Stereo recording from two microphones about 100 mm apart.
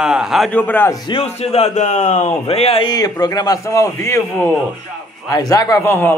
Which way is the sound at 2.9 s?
40° left (ahead or behind).